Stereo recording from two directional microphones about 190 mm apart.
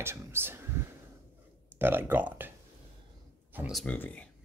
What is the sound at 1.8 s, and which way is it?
Speech, 10° right (ahead or behind).